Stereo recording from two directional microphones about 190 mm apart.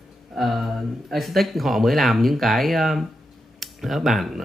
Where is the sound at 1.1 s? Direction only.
Centre (ahead or behind).